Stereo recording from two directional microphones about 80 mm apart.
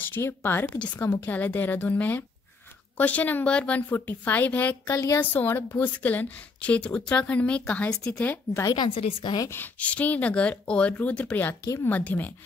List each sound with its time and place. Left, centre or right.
0.0 s a woman's voice: left
0.7 s a woman's voice: centre
4.9 s speech: left
5.2 s a woman's voice: left
8.6 s a woman's voice: left
9.8 s a woman's voice: centre